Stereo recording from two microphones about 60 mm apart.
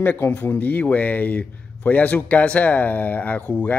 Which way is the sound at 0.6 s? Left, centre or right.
Left.